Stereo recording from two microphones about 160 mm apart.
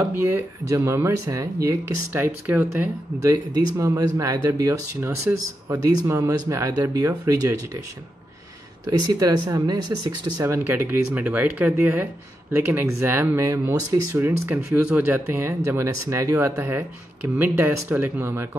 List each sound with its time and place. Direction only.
0.1 s speech: 15° right (ahead or behind)
3.5 s speech: 20° right (ahead or behind)
9.1 s speech: 25° right (ahead or behind)